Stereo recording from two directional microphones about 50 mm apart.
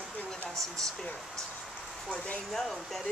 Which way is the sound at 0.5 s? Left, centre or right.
Centre.